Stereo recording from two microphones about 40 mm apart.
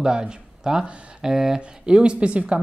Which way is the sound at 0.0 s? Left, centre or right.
Right.